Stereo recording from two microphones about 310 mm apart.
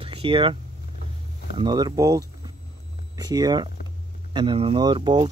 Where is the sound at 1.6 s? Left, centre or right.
Centre.